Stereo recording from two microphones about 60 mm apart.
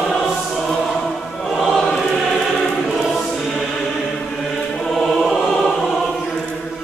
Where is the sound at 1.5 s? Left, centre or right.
Centre.